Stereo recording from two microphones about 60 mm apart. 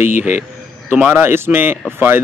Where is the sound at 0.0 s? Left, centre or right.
Right.